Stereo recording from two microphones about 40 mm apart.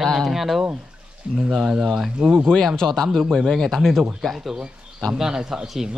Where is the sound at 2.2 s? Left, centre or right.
Right.